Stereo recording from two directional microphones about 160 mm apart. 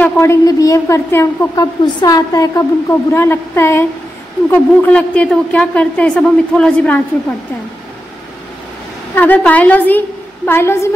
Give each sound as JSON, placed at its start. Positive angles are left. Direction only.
{"t": 0.0, "sound": "a woman's voice", "side_deg": 20}
{"t": 9.1, "sound": "a woman's voice", "side_deg": 10}